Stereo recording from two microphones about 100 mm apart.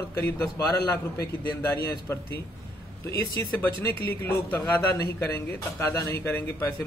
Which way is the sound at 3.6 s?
20° left (ahead or behind).